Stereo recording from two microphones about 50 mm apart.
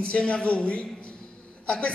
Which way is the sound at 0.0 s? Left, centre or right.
Left.